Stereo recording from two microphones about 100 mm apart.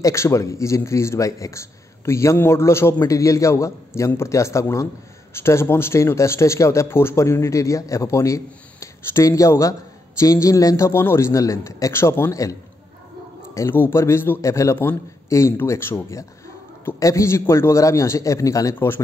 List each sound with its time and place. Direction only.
0.0 s a man's voice: 30° left (ahead or behind)
13.6 s speech: 25° left (ahead or behind)